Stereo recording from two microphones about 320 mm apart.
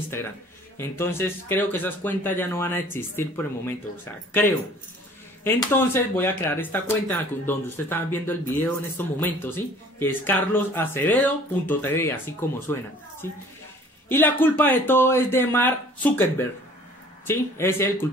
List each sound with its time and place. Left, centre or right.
0.7 s speech: centre
14.0 s speech: centre